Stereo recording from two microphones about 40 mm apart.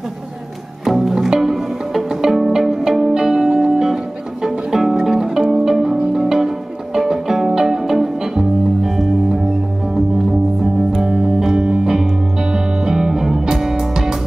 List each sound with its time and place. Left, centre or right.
0.8 s music: centre
1.1 s pizzicato: centre
3.5 s music: centre
5.5 s pizzicato: centre
6.2 s music: centre
10.6 s music: centre